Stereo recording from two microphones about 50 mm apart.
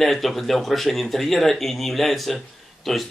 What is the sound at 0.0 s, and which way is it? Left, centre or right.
Speech, centre.